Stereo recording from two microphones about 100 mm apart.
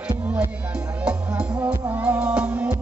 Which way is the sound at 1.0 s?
15° right (ahead or behind).